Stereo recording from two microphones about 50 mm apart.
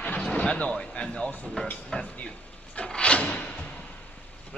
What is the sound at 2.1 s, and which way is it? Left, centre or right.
Drawer open or close, left.